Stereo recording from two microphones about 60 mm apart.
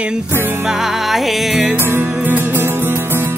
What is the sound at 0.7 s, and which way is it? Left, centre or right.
Music, centre.